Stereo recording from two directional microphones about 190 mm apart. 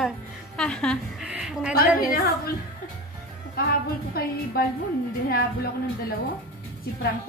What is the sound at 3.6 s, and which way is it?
Speech, 50° left (ahead or behind).